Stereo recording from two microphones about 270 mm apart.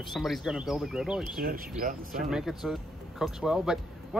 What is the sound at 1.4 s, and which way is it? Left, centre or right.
Speech, right.